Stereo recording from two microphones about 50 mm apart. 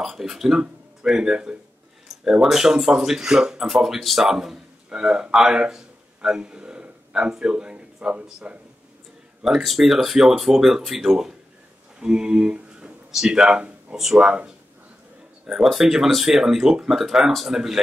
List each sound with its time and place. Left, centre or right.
0.0 s a man's voice: centre; by 8.5 s right
9.6 s speech: centre
15.6 s speech: centre